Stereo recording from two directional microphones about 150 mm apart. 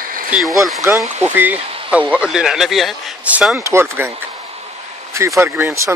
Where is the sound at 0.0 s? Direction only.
65° right (ahead or behind).